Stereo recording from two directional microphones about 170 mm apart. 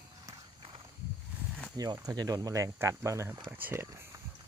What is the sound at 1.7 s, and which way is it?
Speech, 20° right (ahead or behind).